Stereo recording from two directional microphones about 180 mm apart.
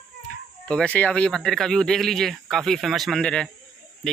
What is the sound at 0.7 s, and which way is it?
Speech, 5° left (ahead or behind).